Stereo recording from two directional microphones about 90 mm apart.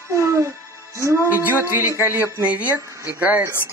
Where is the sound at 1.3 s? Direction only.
20° right (ahead or behind).